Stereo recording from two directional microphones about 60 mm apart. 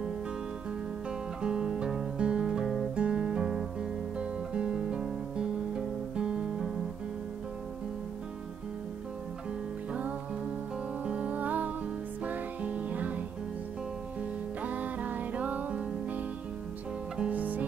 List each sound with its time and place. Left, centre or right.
1.4 s guitar: centre
11.1 s music: right
14.6 s music: right
17.3 s music: right